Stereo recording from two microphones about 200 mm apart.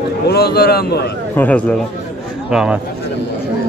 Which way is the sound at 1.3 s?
10° left (ahead or behind).